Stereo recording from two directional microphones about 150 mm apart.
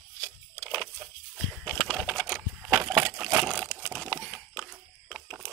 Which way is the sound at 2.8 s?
15° right (ahead or behind).